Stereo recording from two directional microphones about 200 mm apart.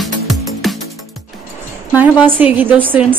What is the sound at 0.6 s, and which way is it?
Music, centre (ahead or behind).